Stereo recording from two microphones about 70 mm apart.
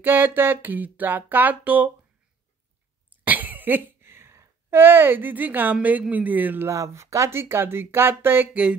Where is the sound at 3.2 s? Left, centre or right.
Right.